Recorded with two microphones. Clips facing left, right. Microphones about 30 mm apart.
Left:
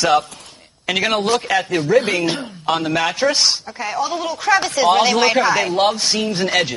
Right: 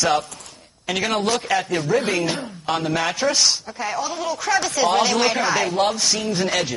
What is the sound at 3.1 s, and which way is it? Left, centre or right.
Speech, centre.